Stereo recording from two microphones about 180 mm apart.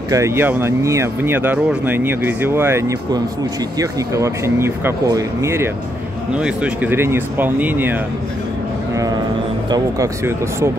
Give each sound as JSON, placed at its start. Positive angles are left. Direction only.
{"t": 0.1, "sound": "speech", "side_deg": -15}
{"t": 9.7, "sound": "speech", "side_deg": -15}